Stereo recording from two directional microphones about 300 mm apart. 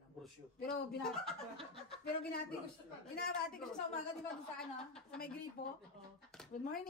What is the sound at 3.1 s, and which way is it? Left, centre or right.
Speech, left.